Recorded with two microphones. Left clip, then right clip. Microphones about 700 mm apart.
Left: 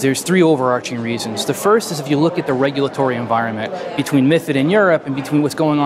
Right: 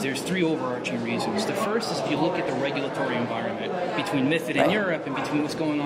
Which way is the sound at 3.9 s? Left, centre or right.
Left.